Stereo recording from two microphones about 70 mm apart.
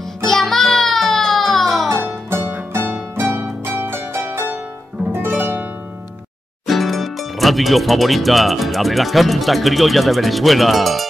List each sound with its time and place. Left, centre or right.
0.2 s music: centre
2.2 s pizzicato: right
5.1 s music: right
6.6 s speech: centre